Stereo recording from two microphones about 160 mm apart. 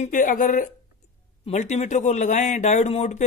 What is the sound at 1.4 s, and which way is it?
Speech, 45° left (ahead or behind).